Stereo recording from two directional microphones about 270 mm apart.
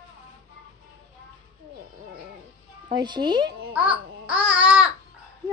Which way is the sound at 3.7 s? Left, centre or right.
Centre.